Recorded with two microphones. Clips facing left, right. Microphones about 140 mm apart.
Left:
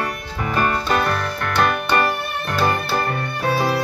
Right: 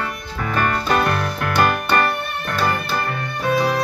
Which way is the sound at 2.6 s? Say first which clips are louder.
Left 2 dB; 25° left (ahead or behind).